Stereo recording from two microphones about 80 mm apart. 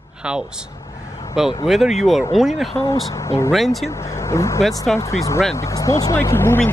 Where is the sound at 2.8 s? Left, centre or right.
Left.